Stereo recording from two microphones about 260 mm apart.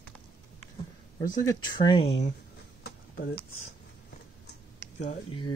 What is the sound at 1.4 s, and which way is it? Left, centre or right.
Speech, centre.